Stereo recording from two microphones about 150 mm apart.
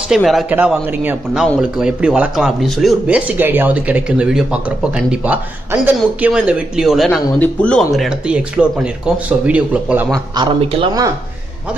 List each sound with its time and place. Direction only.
0.1 s speech: centre (ahead or behind)
10.3 s speech: 35° right (ahead or behind)